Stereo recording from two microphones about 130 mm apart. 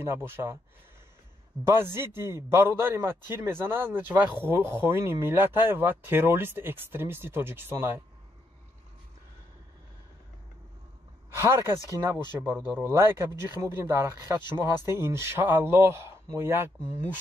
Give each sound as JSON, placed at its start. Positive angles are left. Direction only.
{"t": 0.0, "sound": "speech", "side_deg": -20}
{"t": 1.7, "sound": "speech", "side_deg": -20}
{"t": 11.3, "sound": "speech", "side_deg": -20}